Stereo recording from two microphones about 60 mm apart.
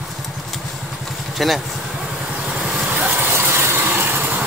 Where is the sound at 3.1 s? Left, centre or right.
Right.